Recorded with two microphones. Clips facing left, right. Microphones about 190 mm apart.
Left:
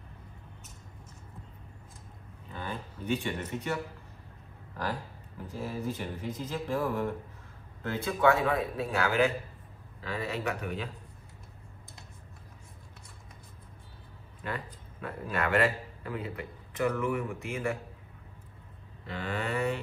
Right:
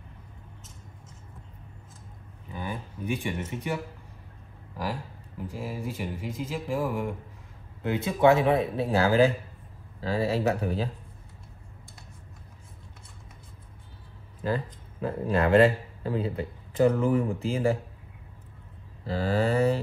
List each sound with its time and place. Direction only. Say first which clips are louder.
2.5 s speech: right 3 dB; 15° right (ahead or behind)
5.5 s speech: left 1 dB; 10° right (ahead or behind); by 10.9 s 30° right (ahead or behind)
14.4 s a man's voice: right 8 dB; 30° right (ahead or behind)
19.0 s speech: right 9 dB; 35° right (ahead or behind)